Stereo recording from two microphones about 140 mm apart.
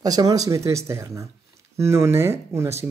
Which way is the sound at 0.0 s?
25° right (ahead or behind).